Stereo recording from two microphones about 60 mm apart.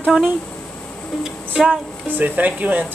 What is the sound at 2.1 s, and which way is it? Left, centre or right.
Speech, right.